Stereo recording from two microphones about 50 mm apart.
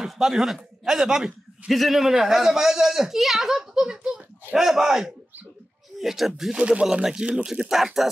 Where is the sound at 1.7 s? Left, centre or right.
Centre.